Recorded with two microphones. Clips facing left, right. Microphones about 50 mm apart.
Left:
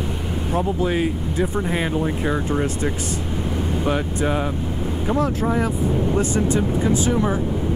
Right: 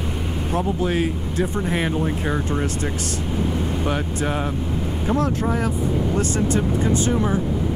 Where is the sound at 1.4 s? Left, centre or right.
Centre.